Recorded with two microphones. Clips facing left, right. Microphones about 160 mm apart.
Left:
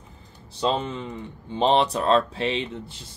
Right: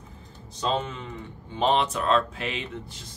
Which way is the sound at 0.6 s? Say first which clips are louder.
Left 3 dB; 30° left (ahead or behind).